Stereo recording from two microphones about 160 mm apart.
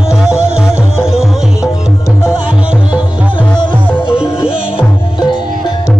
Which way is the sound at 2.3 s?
5° right (ahead or behind).